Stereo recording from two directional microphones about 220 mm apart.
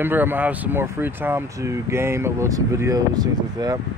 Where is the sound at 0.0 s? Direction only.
10° right (ahead or behind).